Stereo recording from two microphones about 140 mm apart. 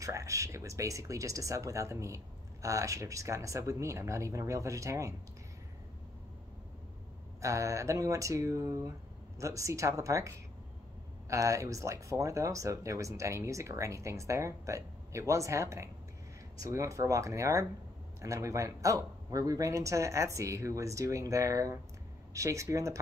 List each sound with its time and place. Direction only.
0.0 s speech: 20° right (ahead or behind)
7.4 s speech: 20° right (ahead or behind)